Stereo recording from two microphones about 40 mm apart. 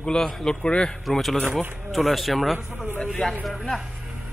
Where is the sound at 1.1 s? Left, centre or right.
Centre.